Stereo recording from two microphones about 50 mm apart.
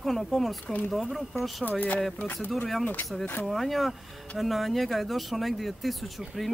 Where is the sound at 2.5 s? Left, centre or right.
Centre.